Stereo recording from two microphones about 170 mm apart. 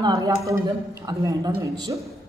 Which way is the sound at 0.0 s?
20° right (ahead or behind).